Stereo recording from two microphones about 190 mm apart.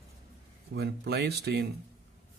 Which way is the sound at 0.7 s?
60° right (ahead or behind).